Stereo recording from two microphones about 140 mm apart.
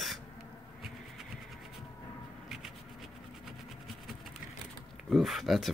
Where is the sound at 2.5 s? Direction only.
Centre (ahead or behind).